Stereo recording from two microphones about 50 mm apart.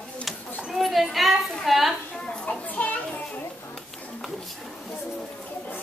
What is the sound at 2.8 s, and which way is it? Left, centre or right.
Children playing, left.